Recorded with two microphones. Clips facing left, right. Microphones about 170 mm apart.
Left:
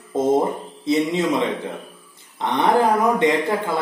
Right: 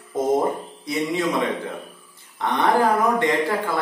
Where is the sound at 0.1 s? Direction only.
25° left (ahead or behind).